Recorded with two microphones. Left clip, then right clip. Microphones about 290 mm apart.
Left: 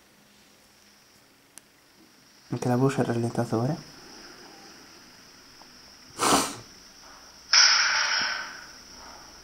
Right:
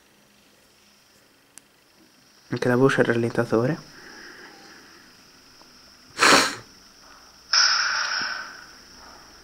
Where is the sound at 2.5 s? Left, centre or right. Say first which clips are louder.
Right 6 dB; centre.